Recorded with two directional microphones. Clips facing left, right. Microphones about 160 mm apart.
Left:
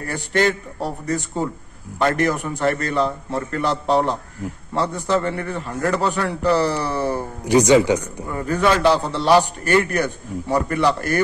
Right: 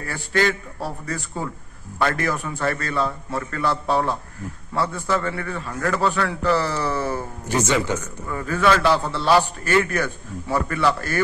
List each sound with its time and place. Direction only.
0.1 s a man's voice: 20° left (ahead or behind)
8.3 s a man's voice: 30° left (ahead or behind)
8.5 s a man's voice: 15° left (ahead or behind)